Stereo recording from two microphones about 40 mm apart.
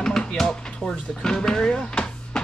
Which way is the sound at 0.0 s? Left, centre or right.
Centre.